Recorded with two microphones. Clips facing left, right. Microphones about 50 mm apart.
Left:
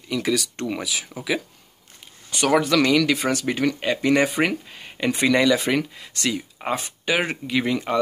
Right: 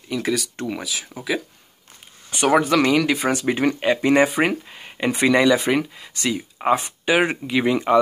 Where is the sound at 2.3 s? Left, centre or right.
Centre.